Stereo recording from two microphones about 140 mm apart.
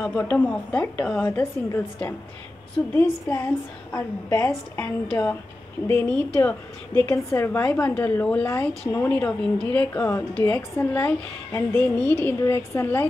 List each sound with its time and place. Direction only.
0.0 s a woman's voice: 15° left (ahead or behind)
2.9 s a woman's voice: 15° left (ahead or behind)